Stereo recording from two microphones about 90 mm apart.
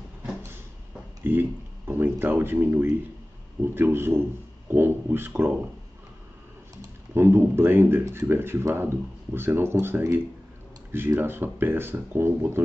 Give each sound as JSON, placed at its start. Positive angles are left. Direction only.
{"t": 1.2, "sound": "speech", "side_deg": -25}
{"t": 7.2, "sound": "speech", "side_deg": -25}